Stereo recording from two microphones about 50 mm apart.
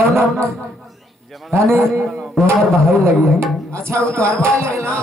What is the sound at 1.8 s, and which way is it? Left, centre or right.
Speech, centre.